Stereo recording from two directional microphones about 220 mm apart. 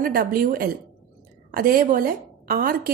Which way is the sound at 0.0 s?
40° right (ahead or behind).